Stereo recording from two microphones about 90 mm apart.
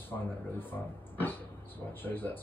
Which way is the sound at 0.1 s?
20° left (ahead or behind).